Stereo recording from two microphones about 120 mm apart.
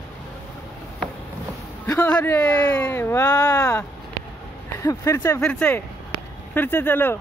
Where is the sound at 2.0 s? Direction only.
15° left (ahead or behind).